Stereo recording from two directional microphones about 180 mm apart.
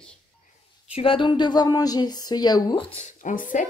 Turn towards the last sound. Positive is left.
turn(degrees=45)  # may be behind; listen again after turning